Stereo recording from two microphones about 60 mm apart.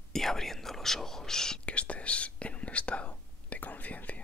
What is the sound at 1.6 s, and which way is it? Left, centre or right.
Whispering, centre.